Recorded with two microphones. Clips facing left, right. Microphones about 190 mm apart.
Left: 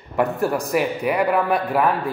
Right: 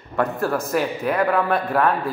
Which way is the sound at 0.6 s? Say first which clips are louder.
Left 1 dB; 5° left (ahead or behind).